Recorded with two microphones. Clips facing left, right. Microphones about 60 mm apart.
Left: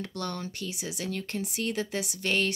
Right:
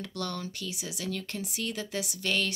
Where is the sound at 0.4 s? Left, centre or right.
Left.